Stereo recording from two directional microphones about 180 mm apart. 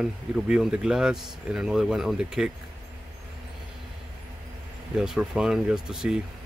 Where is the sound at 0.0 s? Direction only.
5° right (ahead or behind).